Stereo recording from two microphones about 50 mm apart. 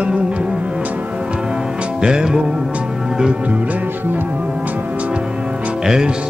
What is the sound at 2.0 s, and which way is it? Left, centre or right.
Music, centre.